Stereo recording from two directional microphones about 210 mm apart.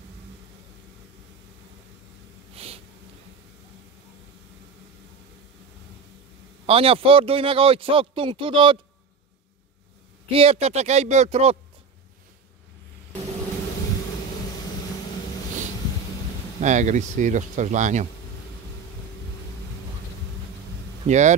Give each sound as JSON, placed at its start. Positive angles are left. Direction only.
{"t": 2.5, "sound": "snort", "side_deg": -30}
{"t": 6.6, "sound": "speech", "side_deg": -25}
{"t": 10.3, "sound": "speech", "side_deg": -30}
{"t": 16.6, "sound": "speech", "side_deg": -35}
{"t": 21.1, "sound": "speech", "side_deg": -35}